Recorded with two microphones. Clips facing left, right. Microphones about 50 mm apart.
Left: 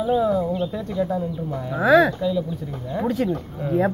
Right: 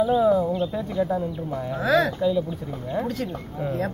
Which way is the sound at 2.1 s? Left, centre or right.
Centre.